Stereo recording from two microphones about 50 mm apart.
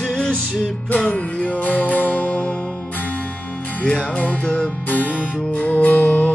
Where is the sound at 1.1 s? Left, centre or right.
Left.